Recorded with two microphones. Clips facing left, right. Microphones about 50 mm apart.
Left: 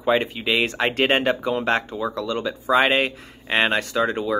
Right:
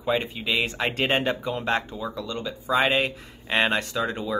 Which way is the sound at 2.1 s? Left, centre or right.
Left.